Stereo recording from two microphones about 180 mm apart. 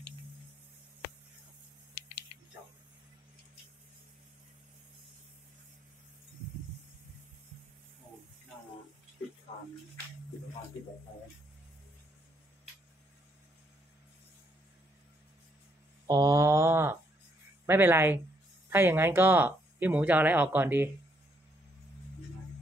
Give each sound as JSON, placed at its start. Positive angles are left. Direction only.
{"t": 16.1, "sound": "mantra", "side_deg": -20}
{"t": 17.6, "sound": "speech", "side_deg": -10}